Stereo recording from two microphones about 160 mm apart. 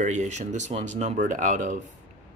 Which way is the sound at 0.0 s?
50° right (ahead or behind).